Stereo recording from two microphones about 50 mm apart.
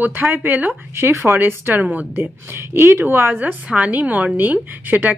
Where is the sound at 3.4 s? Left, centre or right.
Right.